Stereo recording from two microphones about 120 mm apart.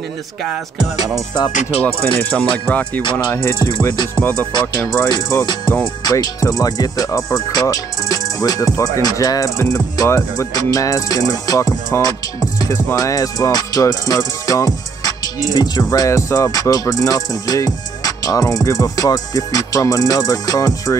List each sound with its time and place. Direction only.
1.8 s speech: 15° left (ahead or behind)
3.0 s speech: 40° left (ahead or behind)
3.4 s music: 25° left (ahead or behind)
4.1 s speech: 15° left (ahead or behind)
5.0 s speech: 35° left (ahead or behind)
12.9 s music: 30° left (ahead or behind)